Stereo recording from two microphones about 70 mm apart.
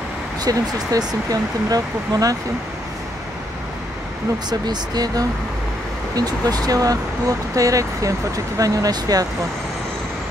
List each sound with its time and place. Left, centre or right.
0.4 s speech: right
4.5 s speech: right